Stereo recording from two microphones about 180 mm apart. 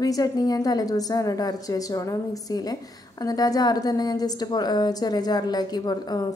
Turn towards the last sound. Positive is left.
turn(degrees=20)  # may be behind; listen again after turning